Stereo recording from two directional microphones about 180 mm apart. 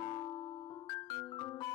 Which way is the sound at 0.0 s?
30° left (ahead or behind).